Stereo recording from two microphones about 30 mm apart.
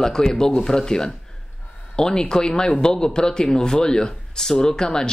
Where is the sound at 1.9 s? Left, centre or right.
Left.